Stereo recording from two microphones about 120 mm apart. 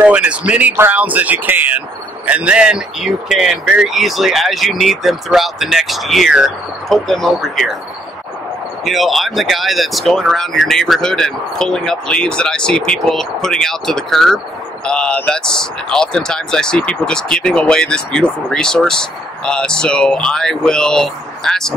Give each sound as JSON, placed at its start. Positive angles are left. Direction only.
{"t": 0.0, "sound": "speech", "side_deg": -10}
{"t": 8.8, "sound": "speech", "side_deg": 0}